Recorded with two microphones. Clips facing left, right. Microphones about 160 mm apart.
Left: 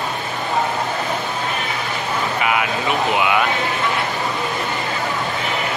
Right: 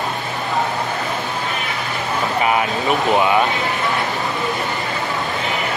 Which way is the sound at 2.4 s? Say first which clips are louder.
Right 4 dB; 35° right (ahead or behind).